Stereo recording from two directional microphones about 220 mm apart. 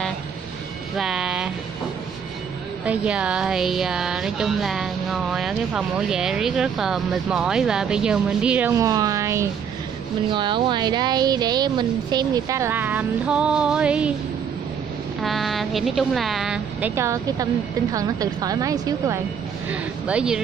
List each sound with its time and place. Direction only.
0.9 s speech: 5° right (ahead or behind)
2.8 s speech: 5° right (ahead or behind)
15.2 s a woman's voice: centre (ahead or behind); by 19.1 s 15° right (ahead or behind)
19.7 s speech: 5° right (ahead or behind)